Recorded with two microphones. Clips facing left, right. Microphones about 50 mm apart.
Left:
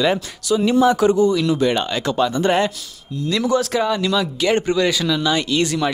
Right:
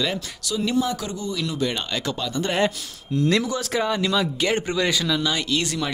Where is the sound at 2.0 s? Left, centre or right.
Left.